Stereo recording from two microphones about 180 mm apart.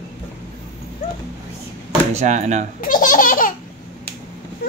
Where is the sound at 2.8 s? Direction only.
50° left (ahead or behind).